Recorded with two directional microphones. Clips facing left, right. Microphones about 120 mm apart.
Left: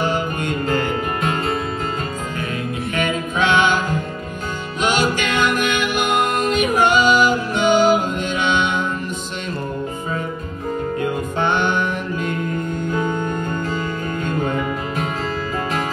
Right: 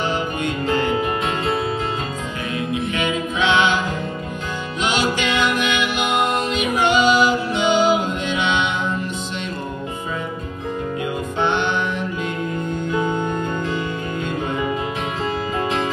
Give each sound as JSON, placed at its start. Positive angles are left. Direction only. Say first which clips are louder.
{"t": 0.7, "sound": "music", "louder": "right 2 dB", "side_deg": 45}
{"t": 3.0, "sound": "a capella", "louder": "left 4 dB", "side_deg": 45}
{"t": 4.8, "sound": "music", "louder": "left 2 dB", "side_deg": 45}
{"t": 11.0, "sound": "music", "louder": "even", "side_deg": 45}